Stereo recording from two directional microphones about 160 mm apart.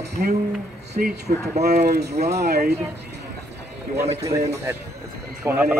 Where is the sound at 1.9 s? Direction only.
90° right.